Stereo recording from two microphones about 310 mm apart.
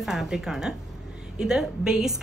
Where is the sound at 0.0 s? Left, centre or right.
Centre.